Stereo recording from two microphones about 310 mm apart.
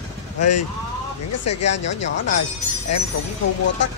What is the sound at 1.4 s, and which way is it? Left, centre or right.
Speech, left.